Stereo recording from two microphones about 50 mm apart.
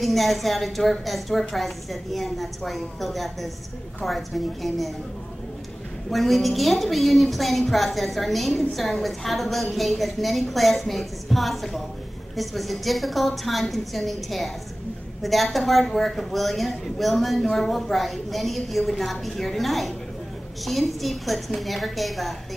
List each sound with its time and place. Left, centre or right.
0.0 s a woman's voice: centre
6.0 s a woman's voice: centre